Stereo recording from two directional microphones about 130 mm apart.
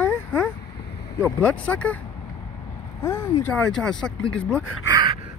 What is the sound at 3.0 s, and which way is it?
Speech, 20° left (ahead or behind).